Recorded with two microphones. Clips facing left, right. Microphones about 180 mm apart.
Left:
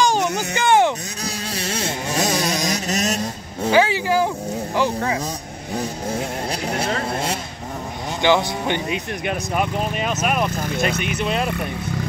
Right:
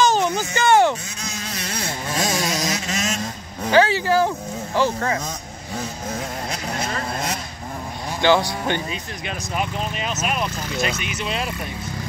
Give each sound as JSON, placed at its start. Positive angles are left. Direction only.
{"t": 0.0, "sound": "baby cry", "side_deg": 15}
{"t": 1.2, "sound": "a sound", "side_deg": 30}
{"t": 2.7, "sound": "a sound", "side_deg": 40}
{"t": 3.7, "sound": "speech", "side_deg": 15}
{"t": 6.1, "sound": "music", "side_deg": 30}
{"t": 8.2, "sound": "speech", "side_deg": 15}
{"t": 8.9, "sound": "speech", "side_deg": 55}